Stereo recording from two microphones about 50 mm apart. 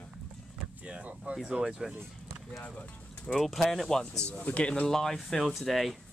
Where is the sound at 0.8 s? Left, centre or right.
Right.